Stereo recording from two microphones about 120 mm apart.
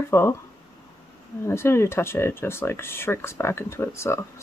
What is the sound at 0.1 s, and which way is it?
Speech, 20° left (ahead or behind).